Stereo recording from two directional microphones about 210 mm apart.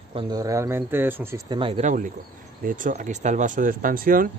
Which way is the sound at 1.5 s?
25° right (ahead or behind).